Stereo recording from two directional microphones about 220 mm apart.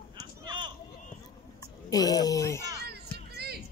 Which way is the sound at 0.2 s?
20° right (ahead or behind).